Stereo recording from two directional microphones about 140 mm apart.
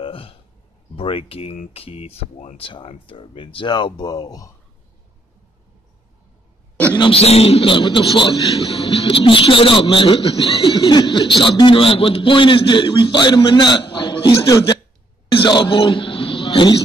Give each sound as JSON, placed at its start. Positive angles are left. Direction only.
{"t": 0.0, "sound": "a sound", "side_deg": 40}
{"t": 0.9, "sound": "a man's voice", "side_deg": 40}
{"t": 7.0, "sound": "a man's voice", "side_deg": 45}